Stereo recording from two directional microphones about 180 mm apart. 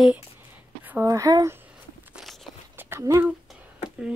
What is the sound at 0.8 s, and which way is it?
Speech, 15° right (ahead or behind).